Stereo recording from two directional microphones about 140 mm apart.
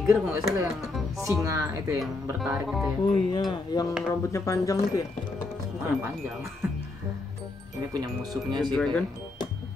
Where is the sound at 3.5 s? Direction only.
30° left (ahead or behind).